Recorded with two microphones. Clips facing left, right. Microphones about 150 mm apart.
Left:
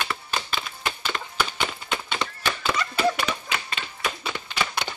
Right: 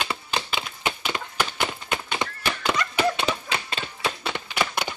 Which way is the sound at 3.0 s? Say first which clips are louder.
Left 1 dB; 25° right (ahead or behind).